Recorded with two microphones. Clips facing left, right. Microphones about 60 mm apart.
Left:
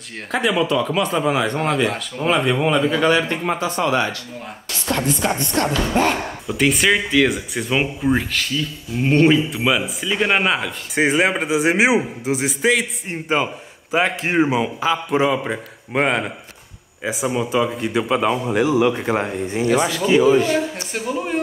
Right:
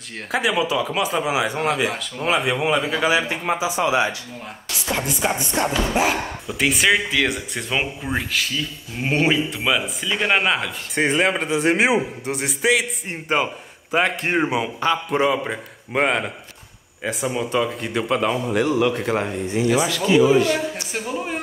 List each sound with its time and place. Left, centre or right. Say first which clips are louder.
0.3 s a man's voice: left 2 dB; centre
19.4 s speech: even; left
20.5 s speech: left 3 dB; centre